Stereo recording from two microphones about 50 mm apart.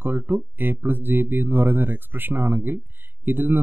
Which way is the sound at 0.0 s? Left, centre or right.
Right.